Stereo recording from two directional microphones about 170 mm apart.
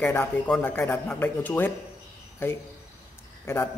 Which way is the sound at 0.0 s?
15° left (ahead or behind).